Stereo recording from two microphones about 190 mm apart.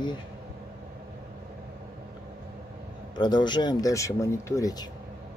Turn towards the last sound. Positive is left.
turn(degrees=15)  # may be behind; listen again after turning